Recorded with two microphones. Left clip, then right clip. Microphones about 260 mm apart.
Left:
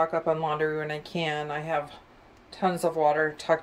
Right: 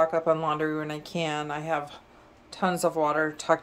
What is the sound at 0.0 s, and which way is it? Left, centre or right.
Speech, centre.